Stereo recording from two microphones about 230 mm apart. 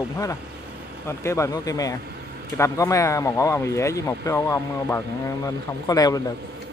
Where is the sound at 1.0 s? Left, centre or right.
Centre.